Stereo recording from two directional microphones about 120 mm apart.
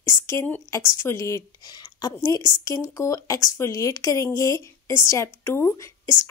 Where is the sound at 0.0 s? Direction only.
25° left (ahead or behind).